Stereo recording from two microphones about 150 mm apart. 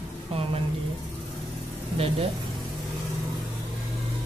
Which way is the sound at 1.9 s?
40° right (ahead or behind).